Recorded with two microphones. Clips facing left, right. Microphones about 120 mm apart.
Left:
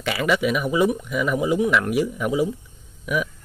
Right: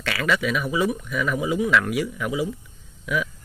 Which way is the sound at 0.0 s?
15° left (ahead or behind).